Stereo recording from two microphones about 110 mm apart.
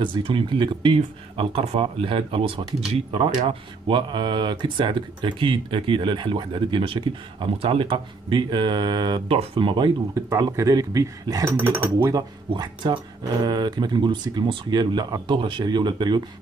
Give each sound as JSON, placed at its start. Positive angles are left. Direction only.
{"t": 0.0, "sound": "speech", "side_deg": -50}
{"t": 2.9, "sound": "speech", "side_deg": -65}
{"t": 9.3, "sound": "speech", "side_deg": -50}
{"t": 10.3, "sound": "speech", "side_deg": -30}
{"t": 11.4, "sound": "speech", "side_deg": -20}
{"t": 12.0, "sound": "speech", "side_deg": -35}